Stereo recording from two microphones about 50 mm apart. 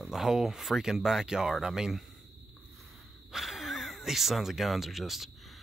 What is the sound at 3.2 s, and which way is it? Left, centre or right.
Speech, centre.